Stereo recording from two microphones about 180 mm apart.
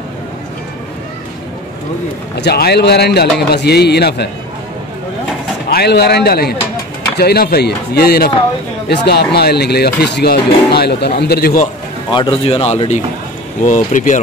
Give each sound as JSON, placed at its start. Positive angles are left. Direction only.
{"t": 2.3, "sound": "speech", "side_deg": 65}
{"t": 5.7, "sound": "speech", "side_deg": 65}
{"t": 12.1, "sound": "speech", "side_deg": 30}